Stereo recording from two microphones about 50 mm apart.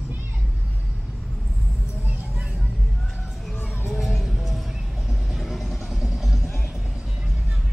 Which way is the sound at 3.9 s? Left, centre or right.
Centre.